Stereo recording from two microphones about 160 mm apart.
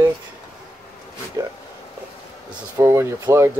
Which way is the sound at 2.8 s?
15° right (ahead or behind).